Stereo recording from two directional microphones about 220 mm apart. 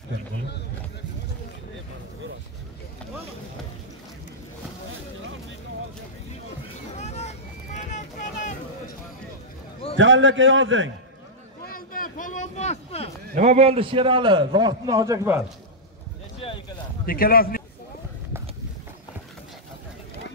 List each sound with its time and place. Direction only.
7.0 s vehicle: 30° left (ahead or behind)
9.9 s a man's voice: 60° right (ahead or behind)
11.6 s a sound: 40° left (ahead or behind)
13.3 s a man's voice: 35° right (ahead or behind); by 15.4 s 10° right (ahead or behind)
16.3 s a sound: 25° left (ahead or behind)
17.0 s a man's voice: 40° left (ahead or behind)